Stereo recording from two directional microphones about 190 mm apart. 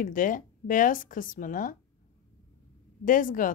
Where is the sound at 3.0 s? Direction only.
45° left (ahead or behind).